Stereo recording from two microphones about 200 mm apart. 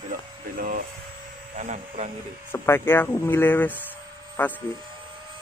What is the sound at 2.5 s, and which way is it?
Speech, 10° left (ahead or behind).